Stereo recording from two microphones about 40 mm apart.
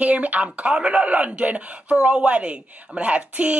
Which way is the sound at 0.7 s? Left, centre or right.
Right.